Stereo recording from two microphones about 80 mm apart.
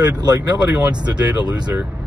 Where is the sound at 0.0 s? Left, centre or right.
Right.